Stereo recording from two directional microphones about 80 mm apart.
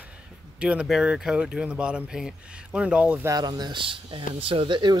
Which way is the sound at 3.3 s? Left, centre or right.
Right.